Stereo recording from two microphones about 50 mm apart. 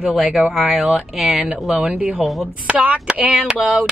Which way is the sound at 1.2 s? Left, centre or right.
Centre.